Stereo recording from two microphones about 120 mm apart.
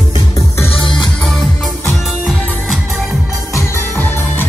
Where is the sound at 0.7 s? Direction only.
45° left (ahead or behind).